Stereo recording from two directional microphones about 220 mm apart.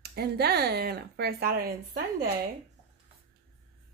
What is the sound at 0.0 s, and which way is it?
Speech, 45° right (ahead or behind).